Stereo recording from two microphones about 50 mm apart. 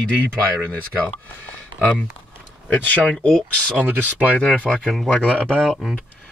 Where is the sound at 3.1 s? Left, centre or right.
Centre.